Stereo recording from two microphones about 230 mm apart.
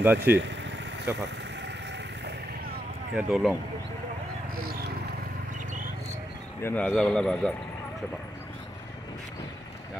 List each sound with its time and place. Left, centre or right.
0.0 s speech: centre
0.3 s speech: right
1.1 s speech: centre
3.2 s a man's voice: centre
6.6 s a man's voice: centre